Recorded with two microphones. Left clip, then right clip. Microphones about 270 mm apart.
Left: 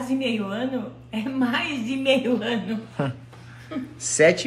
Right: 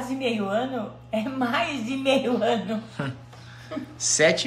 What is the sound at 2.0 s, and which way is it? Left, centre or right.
Speech, centre.